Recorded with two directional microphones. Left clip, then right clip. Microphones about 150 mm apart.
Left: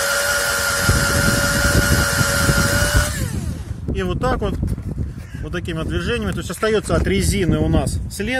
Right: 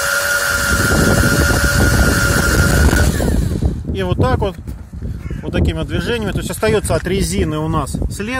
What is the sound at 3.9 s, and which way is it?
Speech, 45° right (ahead or behind).